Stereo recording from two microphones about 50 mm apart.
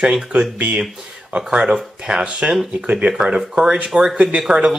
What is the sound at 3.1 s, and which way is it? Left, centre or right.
Speech, centre.